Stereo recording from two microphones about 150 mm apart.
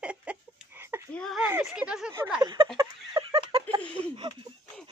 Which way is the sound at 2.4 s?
30° right (ahead or behind).